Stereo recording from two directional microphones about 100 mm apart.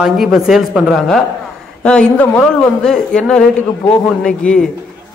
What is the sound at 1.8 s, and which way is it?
Speech, 10° left (ahead or behind).